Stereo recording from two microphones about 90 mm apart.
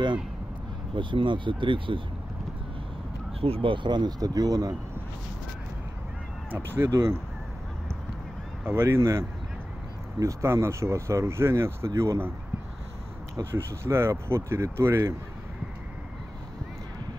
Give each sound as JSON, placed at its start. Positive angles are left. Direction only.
{"t": 0.9, "sound": "speech", "side_deg": -65}
{"t": 3.3, "sound": "speech", "side_deg": -90}
{"t": 6.5, "sound": "speech", "side_deg": -25}
{"t": 8.6, "sound": "speech", "side_deg": -25}
{"t": 13.4, "sound": "speech", "side_deg": -30}